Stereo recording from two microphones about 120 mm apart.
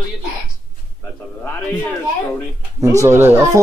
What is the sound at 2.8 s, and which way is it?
Speech, 25° right (ahead or behind).